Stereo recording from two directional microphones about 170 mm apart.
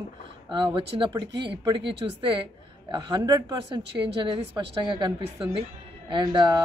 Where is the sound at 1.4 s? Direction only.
30° right (ahead or behind).